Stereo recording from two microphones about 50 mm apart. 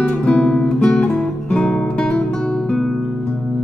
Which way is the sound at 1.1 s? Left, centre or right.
Centre.